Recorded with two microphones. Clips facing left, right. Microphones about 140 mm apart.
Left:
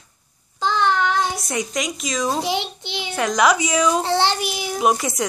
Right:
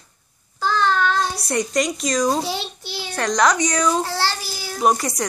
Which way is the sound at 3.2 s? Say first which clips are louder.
Even; 5° left (ahead or behind).